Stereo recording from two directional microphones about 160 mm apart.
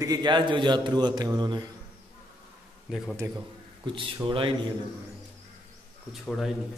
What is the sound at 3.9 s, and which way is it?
Speech, 30° right (ahead or behind).